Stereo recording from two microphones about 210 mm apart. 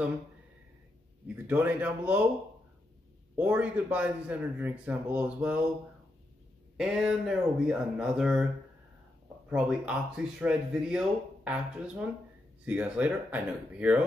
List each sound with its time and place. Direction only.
1.2 s a man's voice: 10° right (ahead or behind)
3.3 s a man's voice: 10° right (ahead or behind)
6.8 s speech: 5° right (ahead or behind)
9.5 s a man's voice: 5° right (ahead or behind)